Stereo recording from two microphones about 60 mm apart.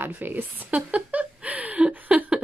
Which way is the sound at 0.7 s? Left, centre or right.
Right.